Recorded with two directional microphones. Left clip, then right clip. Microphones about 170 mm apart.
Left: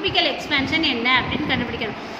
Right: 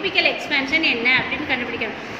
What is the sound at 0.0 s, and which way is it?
A woman's voice, 60° left (ahead or behind).